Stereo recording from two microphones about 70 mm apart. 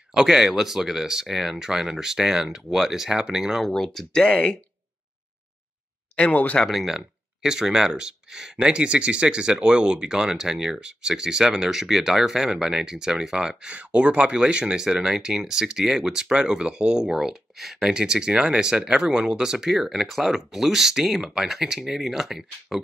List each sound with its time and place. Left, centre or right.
0.1 s speech: centre
3.6 s speech: centre
6.1 s speech: centre
6.6 s speech: centre